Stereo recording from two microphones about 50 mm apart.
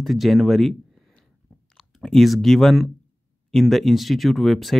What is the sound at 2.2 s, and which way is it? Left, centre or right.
Speech, centre.